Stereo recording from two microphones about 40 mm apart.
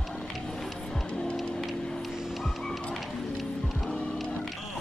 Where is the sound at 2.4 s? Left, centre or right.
Centre.